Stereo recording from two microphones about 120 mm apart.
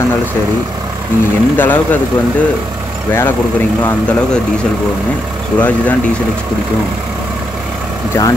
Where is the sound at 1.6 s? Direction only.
15° left (ahead or behind).